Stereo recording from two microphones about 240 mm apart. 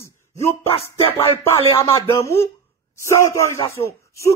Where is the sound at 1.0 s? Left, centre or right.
Centre.